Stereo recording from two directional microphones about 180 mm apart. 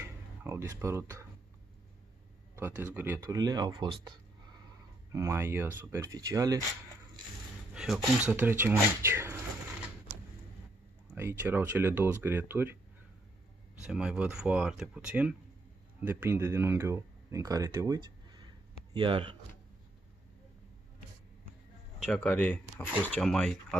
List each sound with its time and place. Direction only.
0.0 s speech: 15° right (ahead or behind)
2.5 s speech: 10° right (ahead or behind)
7.7 s speech: centre (ahead or behind)
11.1 s speech: 15° right (ahead or behind)
13.8 s speech: 5° right (ahead or behind); by 19.3 s 30° right (ahead or behind)
22.0 s speech: 5° left (ahead or behind)